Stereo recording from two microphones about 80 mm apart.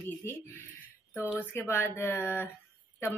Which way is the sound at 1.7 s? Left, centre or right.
Left.